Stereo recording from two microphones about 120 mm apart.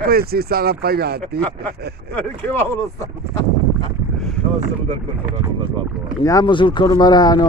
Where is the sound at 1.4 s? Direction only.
15° left (ahead or behind).